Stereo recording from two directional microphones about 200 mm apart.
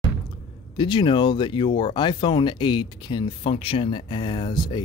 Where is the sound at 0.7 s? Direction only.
25° left (ahead or behind).